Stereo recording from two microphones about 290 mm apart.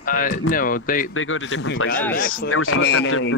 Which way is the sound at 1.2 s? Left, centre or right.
Left.